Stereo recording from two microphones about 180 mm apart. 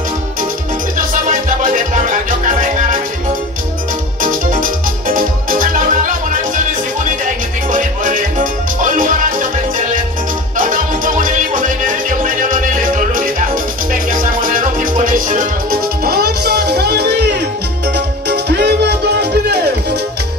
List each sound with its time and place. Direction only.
1.6 s music: 45° right (ahead or behind)
4.2 s music: 50° right (ahead or behind)
7.7 s music: 45° right (ahead or behind); by 20.0 s 65° right (ahead or behind)